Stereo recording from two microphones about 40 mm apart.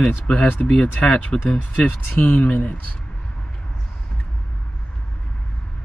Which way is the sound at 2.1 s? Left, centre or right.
Left.